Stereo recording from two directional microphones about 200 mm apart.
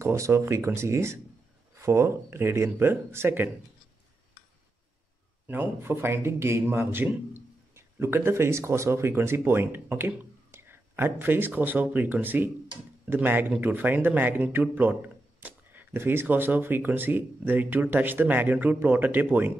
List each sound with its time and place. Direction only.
0.0 s speech: 15° right (ahead or behind)
5.5 s a man's voice: 10° right (ahead or behind)